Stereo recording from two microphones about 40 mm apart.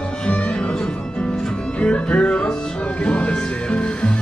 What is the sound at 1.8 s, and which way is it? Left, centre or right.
Music, left.